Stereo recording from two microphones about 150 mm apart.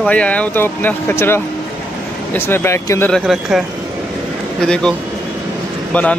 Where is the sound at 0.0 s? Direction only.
10° left (ahead or behind).